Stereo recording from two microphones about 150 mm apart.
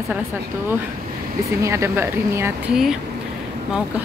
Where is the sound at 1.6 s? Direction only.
20° right (ahead or behind).